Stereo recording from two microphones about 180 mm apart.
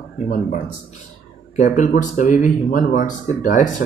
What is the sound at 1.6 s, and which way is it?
Speech, 45° left (ahead or behind).